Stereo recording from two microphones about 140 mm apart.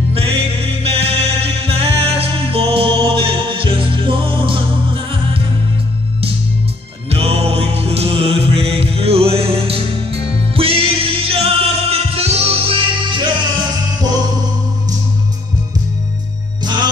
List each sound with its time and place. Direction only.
0.1 s music: 40° right (ahead or behind)
7.1 s mantra: 45° right (ahead or behind)
11.9 s music: 45° right (ahead or behind)
16.6 s music: 30° right (ahead or behind)